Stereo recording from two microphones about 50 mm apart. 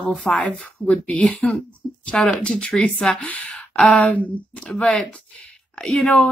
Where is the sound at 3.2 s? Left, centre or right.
Left.